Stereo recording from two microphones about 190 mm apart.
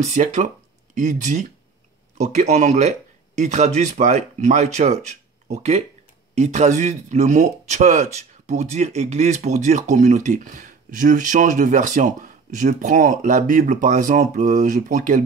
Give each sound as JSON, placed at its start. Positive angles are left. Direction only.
{"t": 0.0, "sound": "speech", "side_deg": -40}